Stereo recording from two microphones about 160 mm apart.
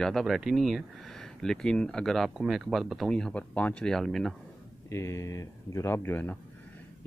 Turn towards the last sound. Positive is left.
turn(degrees=10)  # may be behind; listen again after turning